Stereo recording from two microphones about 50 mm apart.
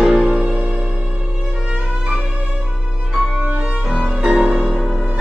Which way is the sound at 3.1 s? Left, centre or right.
Centre.